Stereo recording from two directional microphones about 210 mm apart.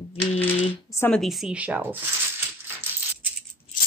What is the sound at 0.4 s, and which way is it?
Speech, 10° left (ahead or behind).